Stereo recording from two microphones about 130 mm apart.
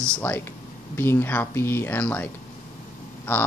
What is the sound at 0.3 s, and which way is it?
Speech, 15° left (ahead or behind).